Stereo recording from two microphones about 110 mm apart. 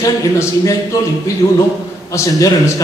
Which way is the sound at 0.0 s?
30° left (ahead or behind).